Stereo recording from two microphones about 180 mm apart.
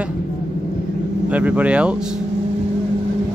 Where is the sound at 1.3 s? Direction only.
5° right (ahead or behind).